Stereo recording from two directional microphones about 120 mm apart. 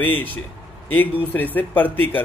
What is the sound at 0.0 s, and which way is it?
Speech, 15° left (ahead or behind).